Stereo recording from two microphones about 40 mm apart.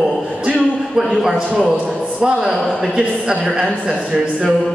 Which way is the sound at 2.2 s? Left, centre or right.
Centre.